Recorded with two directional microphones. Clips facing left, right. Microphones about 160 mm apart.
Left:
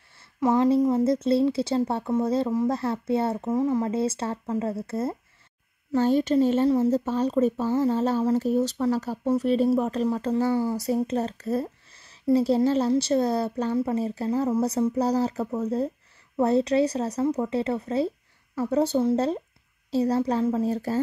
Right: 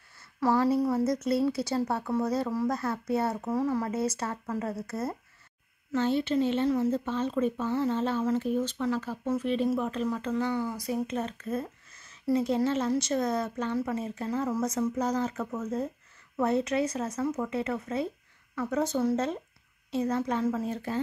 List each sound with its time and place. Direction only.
0.2 s a woman's voice: 20° left (ahead or behind)
5.9 s speech: 40° left (ahead or behind)